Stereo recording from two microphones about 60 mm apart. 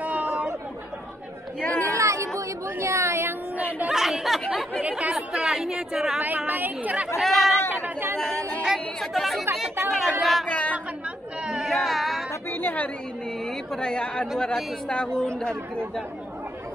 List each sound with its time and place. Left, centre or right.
0.0 s chatter: right
1.8 s a sound: right
3.9 s chatter: centre
4.8 s speech: right
5.1 s speech: centre
6.2 s speech: right
7.2 s chatter: centre
7.7 s chatter: right
8.7 s chatter: centre
9.8 s speech: centre
10.4 s a sound: left
11.4 s a sound: centre
12.4 s chatter: left
13.5 s speech: centre